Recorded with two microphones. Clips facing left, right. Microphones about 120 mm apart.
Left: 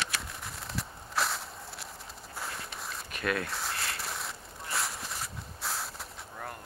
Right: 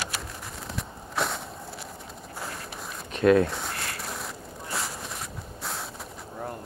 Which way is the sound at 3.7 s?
30° left (ahead or behind).